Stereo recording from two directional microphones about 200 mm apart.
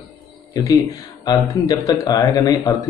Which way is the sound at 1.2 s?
20° left (ahead or behind).